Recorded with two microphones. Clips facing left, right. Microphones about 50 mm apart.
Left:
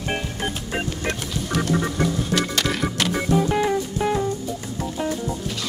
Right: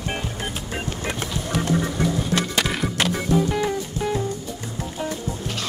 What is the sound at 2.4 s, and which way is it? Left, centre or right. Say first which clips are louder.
Music: even; centre.